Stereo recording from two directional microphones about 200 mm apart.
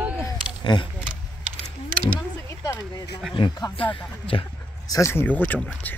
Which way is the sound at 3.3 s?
20° left (ahead or behind).